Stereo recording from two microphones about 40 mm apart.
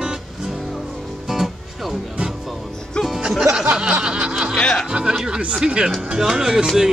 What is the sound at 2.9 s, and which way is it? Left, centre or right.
Music, left.